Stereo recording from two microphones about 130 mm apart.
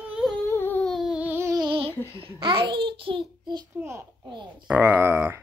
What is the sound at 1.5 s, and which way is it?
Female singing, 30° right (ahead or behind).